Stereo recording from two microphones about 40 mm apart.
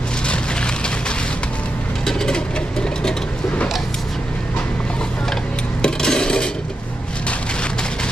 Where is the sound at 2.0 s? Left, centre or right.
Centre.